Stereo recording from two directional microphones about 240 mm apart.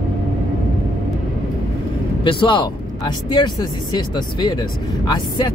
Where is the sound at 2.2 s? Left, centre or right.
Left.